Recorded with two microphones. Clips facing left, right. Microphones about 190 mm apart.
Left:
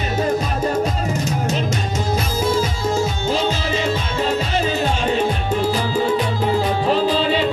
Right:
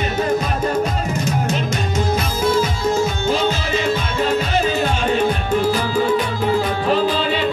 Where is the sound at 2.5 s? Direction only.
35° left (ahead or behind).